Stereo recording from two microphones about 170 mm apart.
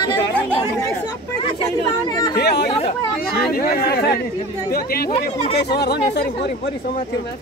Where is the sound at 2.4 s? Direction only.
75° left (ahead or behind).